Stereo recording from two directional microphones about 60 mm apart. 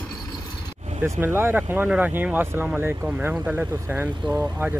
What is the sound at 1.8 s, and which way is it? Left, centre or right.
Speech, right.